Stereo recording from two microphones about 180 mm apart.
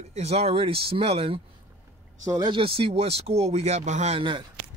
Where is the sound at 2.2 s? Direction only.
20° right (ahead or behind).